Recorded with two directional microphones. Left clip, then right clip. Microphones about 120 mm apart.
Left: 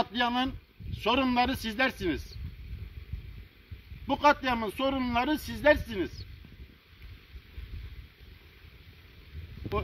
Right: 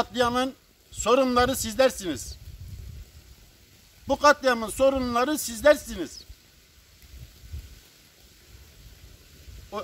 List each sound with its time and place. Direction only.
0.0 s a man's voice: 40° right (ahead or behind)
4.1 s a man's voice: 35° right (ahead or behind)